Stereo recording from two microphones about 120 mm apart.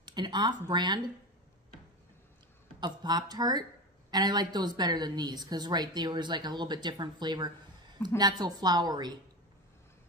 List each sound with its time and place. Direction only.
0.0 s speech: 35° right (ahead or behind)
2.8 s speech: 35° right (ahead or behind)